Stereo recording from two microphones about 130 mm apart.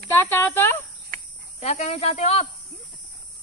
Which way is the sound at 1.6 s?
60° left (ahead or behind).